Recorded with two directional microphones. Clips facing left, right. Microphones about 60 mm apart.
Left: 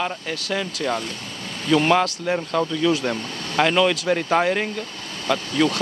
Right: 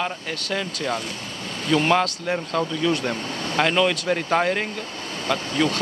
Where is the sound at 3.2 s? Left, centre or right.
Centre.